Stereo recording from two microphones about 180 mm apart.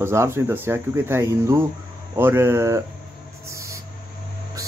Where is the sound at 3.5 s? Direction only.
15° right (ahead or behind).